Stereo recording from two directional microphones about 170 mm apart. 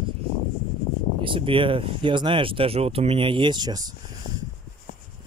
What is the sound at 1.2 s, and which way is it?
Speech, 30° right (ahead or behind).